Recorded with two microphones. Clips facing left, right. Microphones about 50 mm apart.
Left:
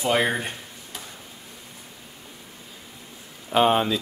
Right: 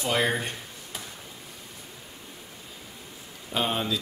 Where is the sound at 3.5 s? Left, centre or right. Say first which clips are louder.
Left 8 dB; left.